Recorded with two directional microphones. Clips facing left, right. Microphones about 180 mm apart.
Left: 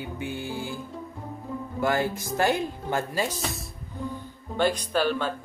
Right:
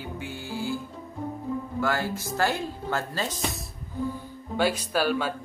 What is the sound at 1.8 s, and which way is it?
Speech, 20° left (ahead or behind).